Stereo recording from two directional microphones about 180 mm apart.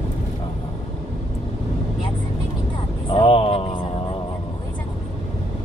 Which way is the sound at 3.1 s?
30° left (ahead or behind).